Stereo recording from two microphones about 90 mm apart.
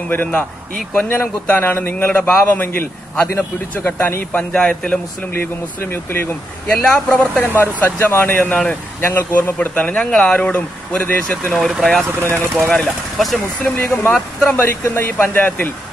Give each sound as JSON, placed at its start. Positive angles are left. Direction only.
{"t": 0.1, "sound": "a man's voice", "side_deg": 20}
{"t": 4.4, "sound": "speech", "side_deg": 10}
{"t": 5.3, "sound": "a man's voice", "side_deg": 25}
{"t": 6.8, "sound": "speech", "side_deg": 10}
{"t": 7.4, "sound": "a man's voice", "side_deg": 20}
{"t": 11.5, "sound": "speech", "side_deg": 0}
{"t": 12.6, "sound": "a man's voice", "side_deg": 15}
{"t": 14.1, "sound": "speech", "side_deg": 5}
{"t": 14.6, "sound": "a man's voice", "side_deg": 20}